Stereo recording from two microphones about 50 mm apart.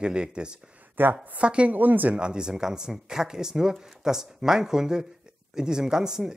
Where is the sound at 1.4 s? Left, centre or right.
Right.